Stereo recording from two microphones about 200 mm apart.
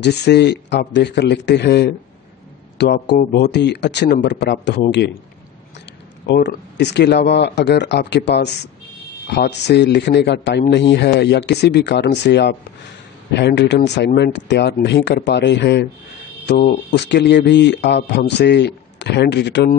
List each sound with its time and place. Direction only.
0.0 s a man's voice: 55° left (ahead or behind)
6.2 s a man's voice: 60° left (ahead or behind)